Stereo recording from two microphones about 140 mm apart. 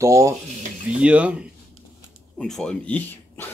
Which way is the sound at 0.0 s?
20° right (ahead or behind).